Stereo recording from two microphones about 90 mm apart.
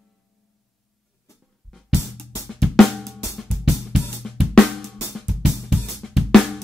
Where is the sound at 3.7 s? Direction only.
25° left (ahead or behind).